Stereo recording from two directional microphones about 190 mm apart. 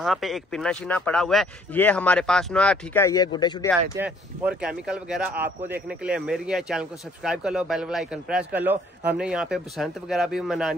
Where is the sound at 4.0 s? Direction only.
5° right (ahead or behind).